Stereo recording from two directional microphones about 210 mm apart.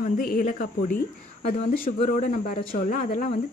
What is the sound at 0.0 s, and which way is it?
Speech, 45° left (ahead or behind).